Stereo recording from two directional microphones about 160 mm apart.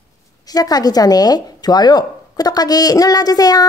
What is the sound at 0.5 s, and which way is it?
Speech, 25° left (ahead or behind).